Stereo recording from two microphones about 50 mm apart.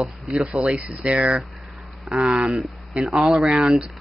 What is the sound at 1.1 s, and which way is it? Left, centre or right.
Speech, right.